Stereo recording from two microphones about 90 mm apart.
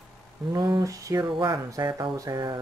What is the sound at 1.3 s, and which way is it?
Speech, 55° right (ahead or behind).